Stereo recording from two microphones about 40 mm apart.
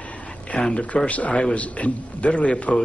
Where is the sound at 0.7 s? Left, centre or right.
Left.